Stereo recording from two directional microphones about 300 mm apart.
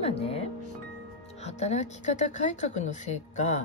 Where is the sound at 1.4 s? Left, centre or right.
Left.